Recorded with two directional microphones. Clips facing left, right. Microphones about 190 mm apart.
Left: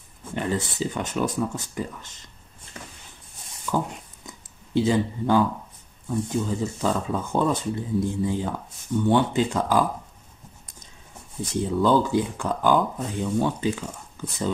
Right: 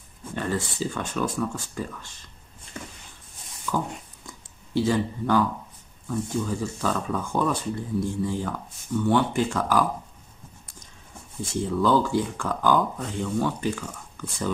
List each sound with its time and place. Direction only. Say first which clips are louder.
0.4 s speech: left 1 dB; 20° left (ahead or behind)
4.3 s a sound: left 2 dB; 20° left (ahead or behind)
6.0 s speech: left 2 dB; 20° left (ahead or behind)
11.4 s speech: left 2 dB; 20° left (ahead or behind)